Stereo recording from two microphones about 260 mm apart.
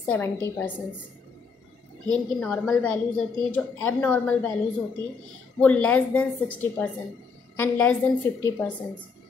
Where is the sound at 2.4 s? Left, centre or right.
Centre.